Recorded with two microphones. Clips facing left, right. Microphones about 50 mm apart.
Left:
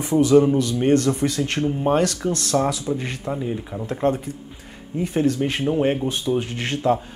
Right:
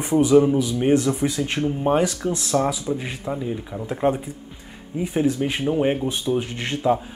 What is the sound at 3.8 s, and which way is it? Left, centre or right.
Speech, centre.